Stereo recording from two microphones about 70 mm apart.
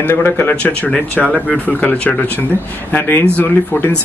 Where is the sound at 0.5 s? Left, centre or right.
Left.